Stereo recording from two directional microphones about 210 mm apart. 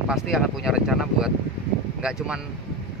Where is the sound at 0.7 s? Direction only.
5° right (ahead or behind).